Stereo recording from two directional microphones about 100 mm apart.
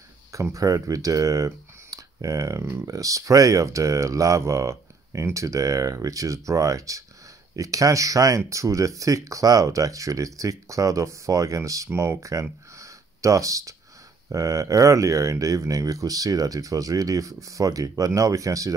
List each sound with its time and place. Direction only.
0.3 s speech: 35° right (ahead or behind)